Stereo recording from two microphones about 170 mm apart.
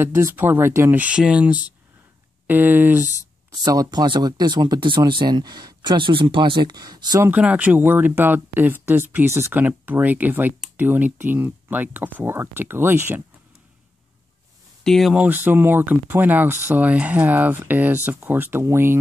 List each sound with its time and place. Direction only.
0.0 s speech: 15° right (ahead or behind)
3.6 s speech: 20° right (ahead or behind)
7.2 s speech: 10° right (ahead or behind)
14.8 s speech: centre (ahead or behind); by 18.9 s 15° right (ahead or behind)